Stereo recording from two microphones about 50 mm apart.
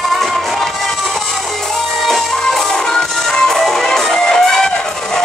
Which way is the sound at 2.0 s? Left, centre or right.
Centre.